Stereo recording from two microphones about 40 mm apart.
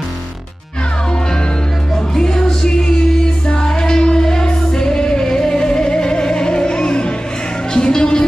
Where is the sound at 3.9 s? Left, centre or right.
Centre.